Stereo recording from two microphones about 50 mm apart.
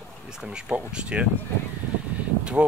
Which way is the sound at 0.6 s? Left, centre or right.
Right.